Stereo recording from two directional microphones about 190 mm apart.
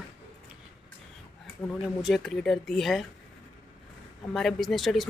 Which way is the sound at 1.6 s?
Centre (ahead or behind).